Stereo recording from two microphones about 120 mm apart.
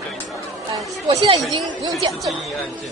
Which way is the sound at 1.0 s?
50° right (ahead or behind).